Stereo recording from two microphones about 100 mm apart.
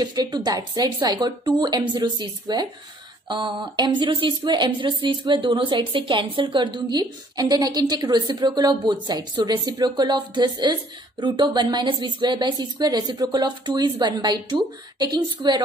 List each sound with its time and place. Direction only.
0.0 s speech: 45° right (ahead or behind)